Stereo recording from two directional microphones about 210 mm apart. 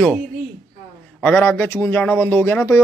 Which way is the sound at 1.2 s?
10° left (ahead or behind).